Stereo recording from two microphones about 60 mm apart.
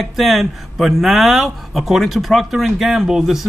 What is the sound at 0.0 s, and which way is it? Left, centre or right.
Speech, centre.